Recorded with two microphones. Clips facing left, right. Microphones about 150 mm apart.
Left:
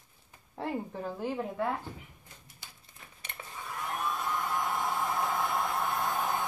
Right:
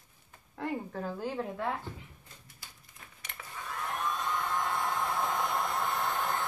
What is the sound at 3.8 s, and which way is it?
Hair dryer, 5° left (ahead or behind).